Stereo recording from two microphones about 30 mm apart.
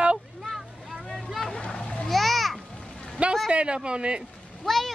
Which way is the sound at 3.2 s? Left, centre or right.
Right.